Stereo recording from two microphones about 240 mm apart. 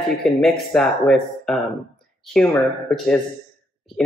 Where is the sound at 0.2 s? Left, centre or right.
Centre.